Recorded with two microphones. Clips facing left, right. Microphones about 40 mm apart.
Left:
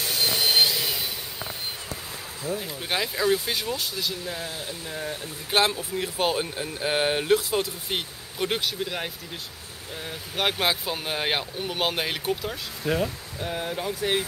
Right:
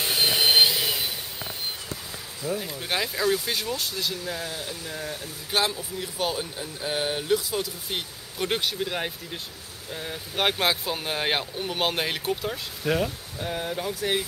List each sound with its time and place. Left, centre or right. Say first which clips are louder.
0.0 s vehicle: right 2 dB; right
2.6 s speech: even; centre
5.0 s speech: left 2 dB; left
8.4 s speech: even; centre
12.8 s speech: even; centre
13.4 s speech: even; centre